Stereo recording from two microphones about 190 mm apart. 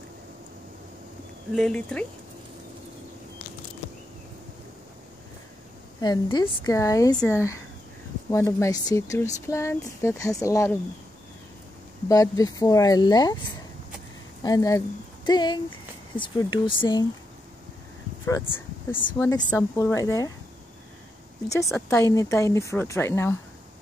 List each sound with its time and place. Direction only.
1.5 s speech: 5° left (ahead or behind)
5.9 s speech: 20° left (ahead or behind)
12.1 s speech: 20° left (ahead or behind)
14.4 s speech: 20° left (ahead or behind)
18.2 s a sound: 10° left (ahead or behind)
19.1 s speech: 15° left (ahead or behind)
21.7 s speech: 15° left (ahead or behind)